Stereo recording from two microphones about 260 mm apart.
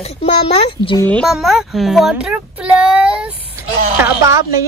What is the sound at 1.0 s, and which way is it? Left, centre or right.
A child's voice, centre.